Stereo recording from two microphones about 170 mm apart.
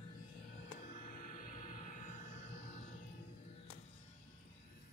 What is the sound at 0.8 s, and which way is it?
Music, 55° left (ahead or behind).